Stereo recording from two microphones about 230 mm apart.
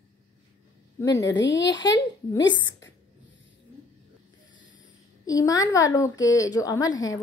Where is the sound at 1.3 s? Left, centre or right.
Left.